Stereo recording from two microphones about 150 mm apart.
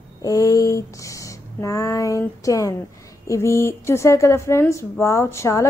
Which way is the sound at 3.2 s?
20° left (ahead or behind).